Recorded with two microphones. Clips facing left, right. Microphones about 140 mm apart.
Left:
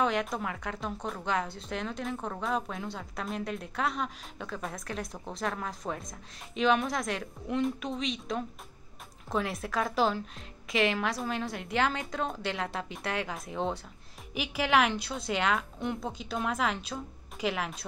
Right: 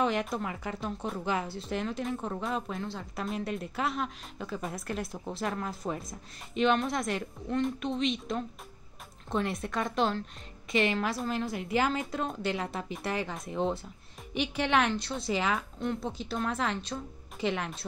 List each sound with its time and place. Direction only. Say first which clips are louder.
0.0 s a woman's voice: even; centre (ahead or behind)